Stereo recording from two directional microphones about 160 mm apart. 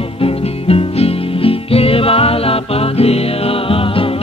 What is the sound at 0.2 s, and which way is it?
Music, 35° left (ahead or behind).